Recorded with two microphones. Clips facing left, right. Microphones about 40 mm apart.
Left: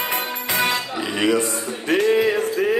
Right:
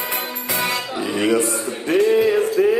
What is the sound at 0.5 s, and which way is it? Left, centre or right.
Music, left.